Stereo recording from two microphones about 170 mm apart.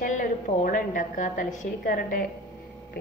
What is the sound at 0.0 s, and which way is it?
A woman's voice, 50° left (ahead or behind).